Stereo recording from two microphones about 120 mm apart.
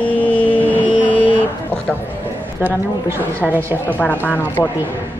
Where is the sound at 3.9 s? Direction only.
15° left (ahead or behind).